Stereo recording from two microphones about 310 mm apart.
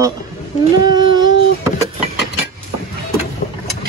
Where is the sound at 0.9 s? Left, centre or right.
Centre.